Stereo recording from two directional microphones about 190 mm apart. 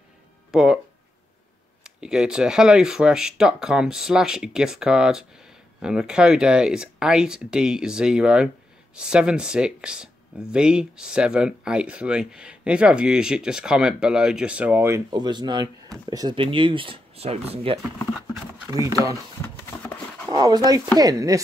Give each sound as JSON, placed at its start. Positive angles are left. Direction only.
{"t": 0.5, "sound": "speech", "side_deg": -5}
{"t": 1.8, "sound": "speech", "side_deg": -5}
{"t": 17.9, "sound": "speech", "side_deg": 0}
{"t": 18.7, "sound": "speech", "side_deg": -20}
{"t": 19.8, "sound": "a sound", "side_deg": 5}
{"t": 20.2, "sound": "speech", "side_deg": -20}